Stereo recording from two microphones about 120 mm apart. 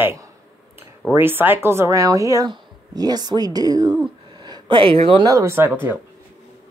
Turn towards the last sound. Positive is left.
turn(degrees=-15)  # may be behind; listen again after turning